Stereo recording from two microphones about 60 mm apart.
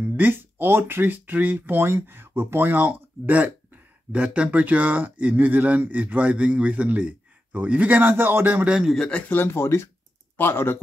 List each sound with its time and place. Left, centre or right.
0.1 s speech: right
1.8 s speech: right
8.6 s a man's voice: centre
9.3 s speech: left